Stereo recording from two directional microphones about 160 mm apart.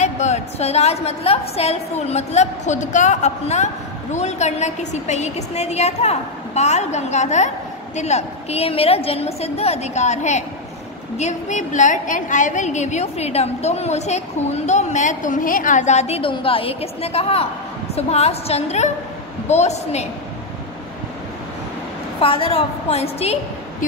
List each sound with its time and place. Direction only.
0.0 s a woman's voice: 45° left (ahead or behind)
22.2 s a woman's voice: 35° left (ahead or behind)